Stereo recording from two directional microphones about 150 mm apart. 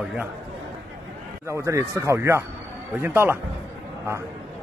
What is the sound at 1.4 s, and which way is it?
A man's voice, 20° right (ahead or behind).